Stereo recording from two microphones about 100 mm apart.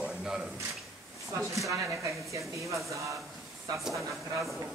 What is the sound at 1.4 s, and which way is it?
Speech, 30° right (ahead or behind).